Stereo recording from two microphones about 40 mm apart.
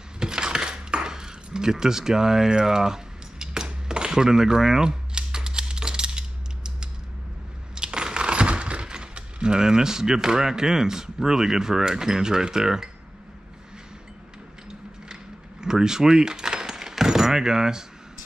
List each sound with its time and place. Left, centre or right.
0.2 s cutlery: centre
7.7 s speech: centre
15.6 s keys jangling: centre